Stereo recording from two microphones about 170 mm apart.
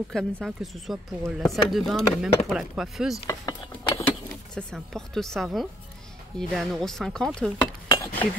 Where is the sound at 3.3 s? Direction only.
20° left (ahead or behind).